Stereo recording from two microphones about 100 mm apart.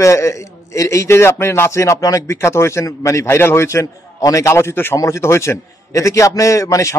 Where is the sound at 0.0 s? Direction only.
30° left (ahead or behind).